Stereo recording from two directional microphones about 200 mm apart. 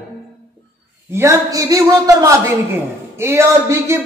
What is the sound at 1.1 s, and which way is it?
A man's voice, 15° right (ahead or behind).